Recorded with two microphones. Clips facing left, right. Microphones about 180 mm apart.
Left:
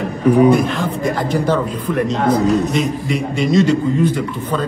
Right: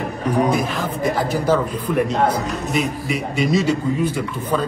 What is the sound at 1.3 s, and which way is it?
A man's voice, 5° right (ahead or behind).